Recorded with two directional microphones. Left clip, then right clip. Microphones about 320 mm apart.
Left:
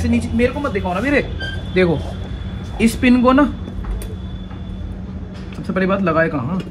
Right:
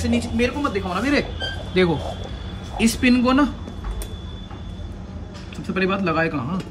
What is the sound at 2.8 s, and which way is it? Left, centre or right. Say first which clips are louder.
Speech: left 4 dB; centre.